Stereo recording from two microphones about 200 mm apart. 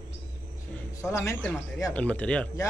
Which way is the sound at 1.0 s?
15° left (ahead or behind).